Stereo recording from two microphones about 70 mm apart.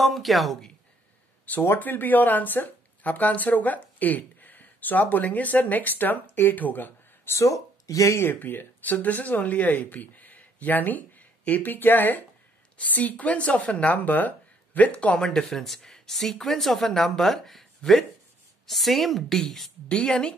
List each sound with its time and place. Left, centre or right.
0.0 s speech: centre
1.4 s a sound: left
1.8 s speech: left
7.8 s speech: left
8.2 s speech: left
15.2 s speech: centre